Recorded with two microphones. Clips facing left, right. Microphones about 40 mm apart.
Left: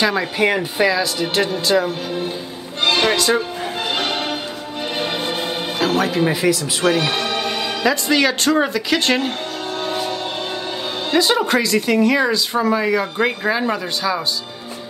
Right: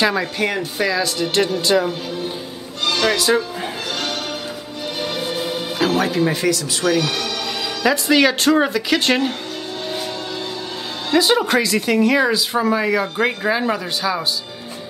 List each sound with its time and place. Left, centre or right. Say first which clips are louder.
0.1 s speech: left 2 dB; centre
0.5 s speech: left 4 dB; centre
1.7 s speech: even; centre
2.8 s music: left 2 dB; left
5.8 s music: even; centre
6.2 s speech: left 1 dB; centre
6.8 s speech: left 1 dB; left
7.8 s speech: right 2 dB; centre
11.1 s speech: right 1 dB; centre